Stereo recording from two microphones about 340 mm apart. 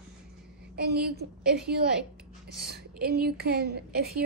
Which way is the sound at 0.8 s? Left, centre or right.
Right.